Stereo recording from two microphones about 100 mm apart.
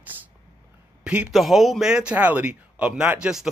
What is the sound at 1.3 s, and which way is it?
Speech, centre (ahead or behind).